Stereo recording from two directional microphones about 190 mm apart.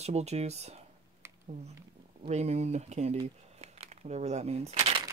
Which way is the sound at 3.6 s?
35° right (ahead or behind).